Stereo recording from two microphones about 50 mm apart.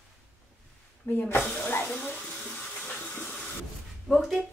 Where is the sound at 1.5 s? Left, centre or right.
Left.